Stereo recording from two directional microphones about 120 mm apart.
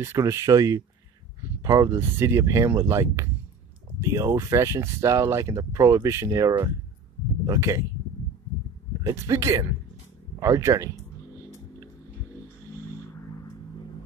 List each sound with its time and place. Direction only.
0.0 s speech: 25° right (ahead or behind)
9.0 s speech: 25° right (ahead or behind)